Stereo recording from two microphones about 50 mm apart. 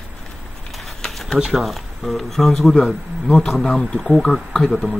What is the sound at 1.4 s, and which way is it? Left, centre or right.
Speech, centre.